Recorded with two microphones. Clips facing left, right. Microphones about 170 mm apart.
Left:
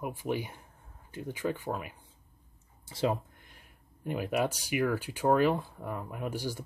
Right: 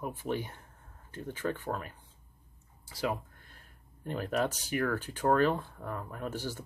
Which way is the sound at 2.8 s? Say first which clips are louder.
Left 4 dB; 25° left (ahead or behind).